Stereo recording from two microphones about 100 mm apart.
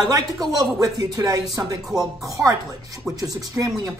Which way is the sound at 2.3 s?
35° right (ahead or behind).